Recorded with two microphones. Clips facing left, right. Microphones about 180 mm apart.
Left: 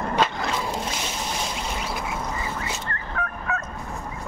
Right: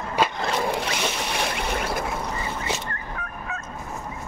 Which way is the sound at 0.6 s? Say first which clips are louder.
Right 3 dB; 70° right (ahead or behind).